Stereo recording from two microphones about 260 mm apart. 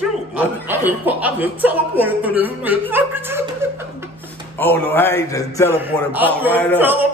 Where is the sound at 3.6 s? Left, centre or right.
Centre.